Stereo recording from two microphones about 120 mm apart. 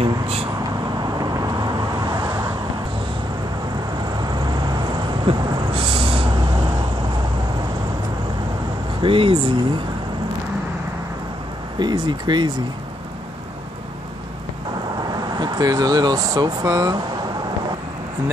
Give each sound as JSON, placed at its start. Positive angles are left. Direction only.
{"t": 0.0, "sound": "vehicle", "side_deg": -55}
{"t": 1.0, "sound": "vehicle", "side_deg": -30}
{"t": 4.2, "sound": "vehicle", "side_deg": -35}
{"t": 9.0, "sound": "a sound", "side_deg": -50}
{"t": 11.8, "sound": "speech", "side_deg": -40}
{"t": 15.3, "sound": "speech", "side_deg": -35}